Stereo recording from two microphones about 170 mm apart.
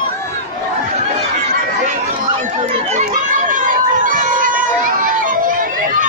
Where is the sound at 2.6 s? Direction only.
45° right (ahead or behind).